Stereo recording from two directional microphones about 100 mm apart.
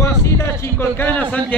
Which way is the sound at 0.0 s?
25° left (ahead or behind).